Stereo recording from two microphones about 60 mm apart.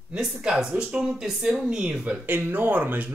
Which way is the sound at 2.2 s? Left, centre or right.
Right.